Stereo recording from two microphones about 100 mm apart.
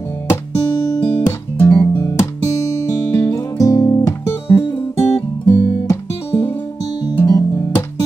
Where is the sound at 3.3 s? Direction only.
35° left (ahead or behind).